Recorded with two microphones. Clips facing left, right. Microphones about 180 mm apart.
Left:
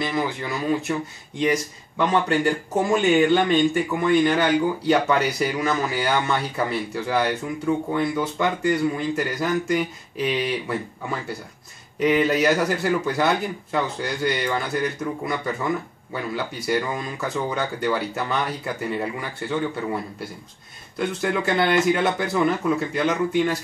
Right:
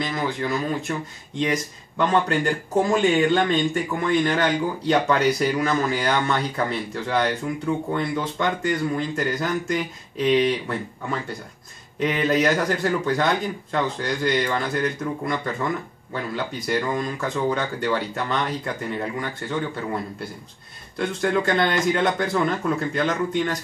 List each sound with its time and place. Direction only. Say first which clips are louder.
0.0 s speech: even; 5° left (ahead or behind)
21.2 s speech: right 2 dB; 5° left (ahead or behind)